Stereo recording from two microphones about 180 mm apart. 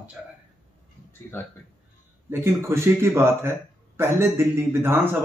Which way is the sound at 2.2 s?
15° right (ahead or behind).